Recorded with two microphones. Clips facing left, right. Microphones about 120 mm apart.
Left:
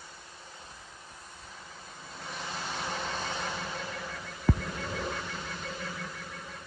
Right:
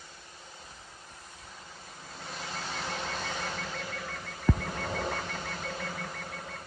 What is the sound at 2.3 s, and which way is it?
Vehicle, 20° left (ahead or behind).